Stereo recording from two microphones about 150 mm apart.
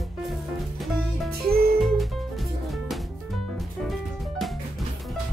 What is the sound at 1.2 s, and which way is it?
Music, 90° right.